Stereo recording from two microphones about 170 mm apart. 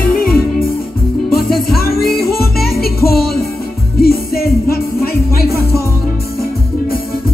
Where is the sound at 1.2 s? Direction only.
60° left (ahead or behind).